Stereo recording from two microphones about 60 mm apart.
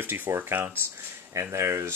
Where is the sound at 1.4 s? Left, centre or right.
Right.